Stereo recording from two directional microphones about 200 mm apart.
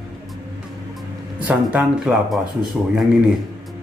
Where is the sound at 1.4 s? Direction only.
5° right (ahead or behind).